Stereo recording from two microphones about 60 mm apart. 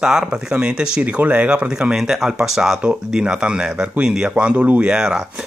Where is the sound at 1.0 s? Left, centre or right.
Right.